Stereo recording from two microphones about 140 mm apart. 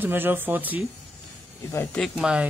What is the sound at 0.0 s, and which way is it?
Speech, 15° right (ahead or behind).